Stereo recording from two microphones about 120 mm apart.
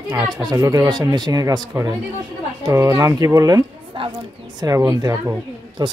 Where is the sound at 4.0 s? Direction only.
45° right (ahead or behind).